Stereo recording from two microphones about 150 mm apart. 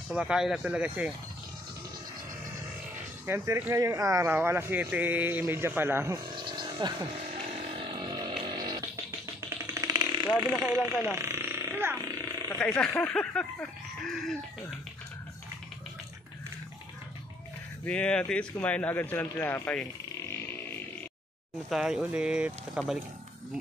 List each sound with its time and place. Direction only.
0.1 s speech: 5° right (ahead or behind)
3.3 s speech: 15° right (ahead or behind)
6.4 s a sound: 30° right (ahead or behind)
10.6 s a sound: 10° right (ahead or behind)
12.4 s speech: 15° left (ahead or behind)
17.8 s speech: 5° left (ahead or behind)
21.6 s speech: 5° right (ahead or behind)